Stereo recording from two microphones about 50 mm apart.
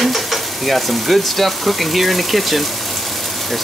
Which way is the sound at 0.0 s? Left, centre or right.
Centre.